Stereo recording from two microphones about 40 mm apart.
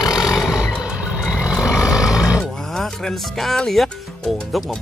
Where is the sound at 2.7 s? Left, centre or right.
Centre.